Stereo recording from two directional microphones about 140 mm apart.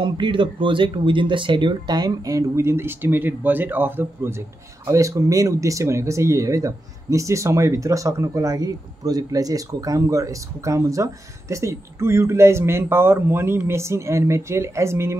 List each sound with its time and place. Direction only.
0.0 s speech: 35° right (ahead or behind); by 15.1 s 20° right (ahead or behind)